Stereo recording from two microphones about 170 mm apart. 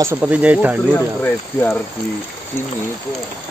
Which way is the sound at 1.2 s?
10° left (ahead or behind).